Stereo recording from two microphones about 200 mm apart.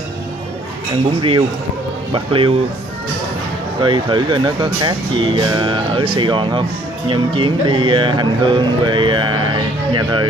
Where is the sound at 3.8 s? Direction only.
25° right (ahead or behind).